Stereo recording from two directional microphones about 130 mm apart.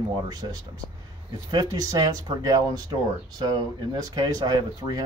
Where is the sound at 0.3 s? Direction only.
30° right (ahead or behind).